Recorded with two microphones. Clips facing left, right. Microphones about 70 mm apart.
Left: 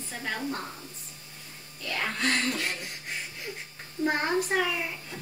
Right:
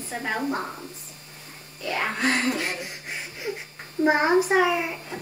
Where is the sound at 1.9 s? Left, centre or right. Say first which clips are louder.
Right 5 dB; right.